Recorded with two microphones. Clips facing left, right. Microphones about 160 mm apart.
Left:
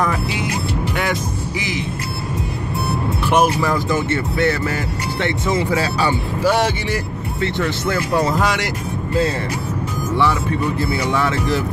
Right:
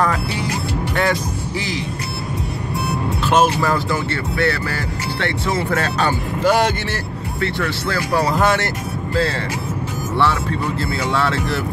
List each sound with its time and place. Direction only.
3.3 s speech: 15° left (ahead or behind)
6.4 s speech: centre (ahead or behind)
7.3 s speech: 20° left (ahead or behind)
10.8 s speech: 15° left (ahead or behind)